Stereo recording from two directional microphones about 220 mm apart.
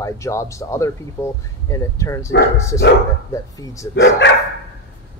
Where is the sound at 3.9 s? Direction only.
55° left (ahead or behind).